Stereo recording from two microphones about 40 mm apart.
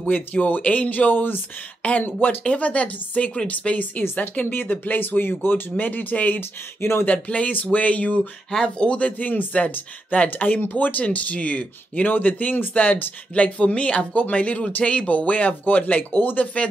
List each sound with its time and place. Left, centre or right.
0.0 s speech: left
1.8 s speech: left
4.0 s speech: left
5.8 s speech: left
6.8 s speech: left
7.2 s speech: left
8.2 s speech: centre
8.6 s speech: left